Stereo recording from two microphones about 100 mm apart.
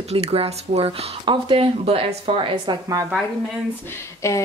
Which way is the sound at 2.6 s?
35° right (ahead or behind).